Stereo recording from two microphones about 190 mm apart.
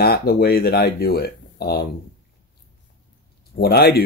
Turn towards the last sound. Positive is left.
turn(degrees=55)  # may be behind; listen again after turning